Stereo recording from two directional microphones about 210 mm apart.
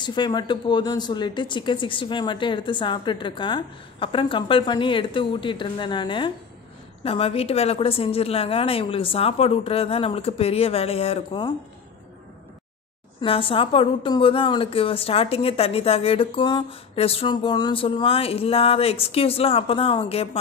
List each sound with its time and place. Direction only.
0.0 s a woman's voice: 20° left (ahead or behind)
13.2 s a woman's voice: 25° left (ahead or behind)